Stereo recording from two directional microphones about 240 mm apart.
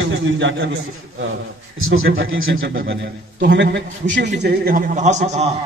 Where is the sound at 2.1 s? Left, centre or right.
Right.